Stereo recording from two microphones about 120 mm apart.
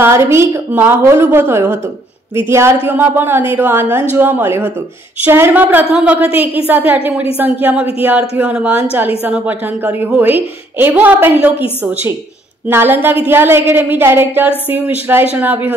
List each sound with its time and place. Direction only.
0.0 s a woman's voice: 20° right (ahead or behind)
12.6 s a woman's voice: 15° right (ahead or behind)